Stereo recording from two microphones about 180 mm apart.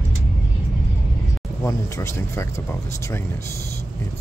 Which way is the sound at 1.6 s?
15° left (ahead or behind).